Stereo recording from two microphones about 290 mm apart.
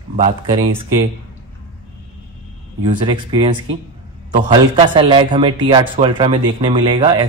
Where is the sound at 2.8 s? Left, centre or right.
Centre.